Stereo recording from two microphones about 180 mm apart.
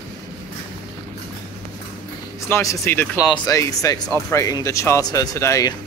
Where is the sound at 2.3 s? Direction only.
15° left (ahead or behind).